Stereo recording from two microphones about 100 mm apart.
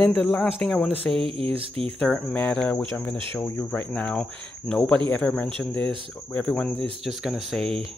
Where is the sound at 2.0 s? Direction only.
15° left (ahead or behind).